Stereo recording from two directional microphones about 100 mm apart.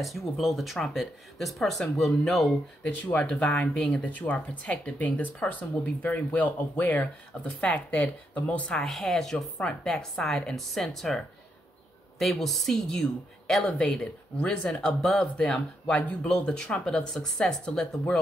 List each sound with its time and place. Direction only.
0.0 s speech: centre (ahead or behind)
2.8 s speech: 15° left (ahead or behind)
12.2 s speech: centre (ahead or behind)